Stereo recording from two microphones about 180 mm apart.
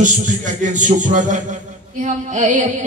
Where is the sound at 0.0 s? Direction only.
45° right (ahead or behind).